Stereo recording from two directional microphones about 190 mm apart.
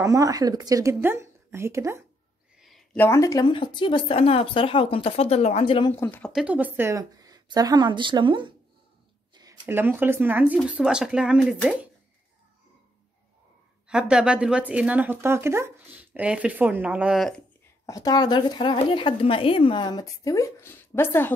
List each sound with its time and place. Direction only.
0.0 s speech: 15° right (ahead or behind)
2.6 s a sound: 5° left (ahead or behind)
3.1 s a woman's voice: 15° left (ahead or behind)
5.9 s speech: 10° left (ahead or behind)
6.4 s a woman's voice: 10° right (ahead or behind)
13.8 s speech: 5° right (ahead or behind)
17.8 s a woman's voice: 20° left (ahead or behind)